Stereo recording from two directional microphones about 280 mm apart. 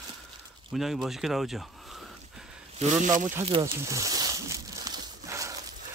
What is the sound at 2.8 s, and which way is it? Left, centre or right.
Speech, right.